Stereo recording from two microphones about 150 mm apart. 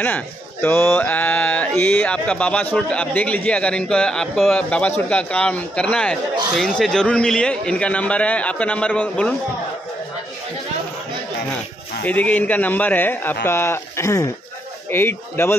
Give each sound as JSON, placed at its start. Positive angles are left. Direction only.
{"t": 0.0, "sound": "speech", "side_deg": 10}
{"t": 12.0, "sound": "speech", "side_deg": 10}